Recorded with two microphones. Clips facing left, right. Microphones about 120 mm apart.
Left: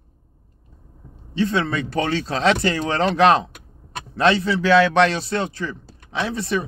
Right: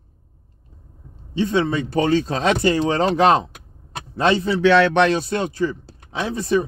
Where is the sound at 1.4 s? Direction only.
20° right (ahead or behind).